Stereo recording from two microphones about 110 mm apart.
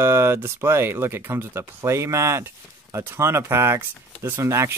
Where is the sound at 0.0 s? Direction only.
20° right (ahead or behind).